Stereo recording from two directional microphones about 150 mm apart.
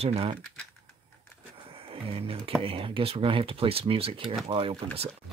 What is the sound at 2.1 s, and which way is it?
Speech, 40° right (ahead or behind).